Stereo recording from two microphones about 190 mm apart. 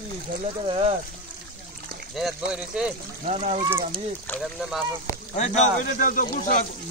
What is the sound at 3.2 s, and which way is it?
Speech, 35° right (ahead or behind).